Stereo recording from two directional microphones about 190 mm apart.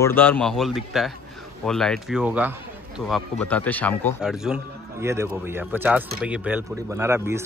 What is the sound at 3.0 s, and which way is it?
Speech, 5° left (ahead or behind).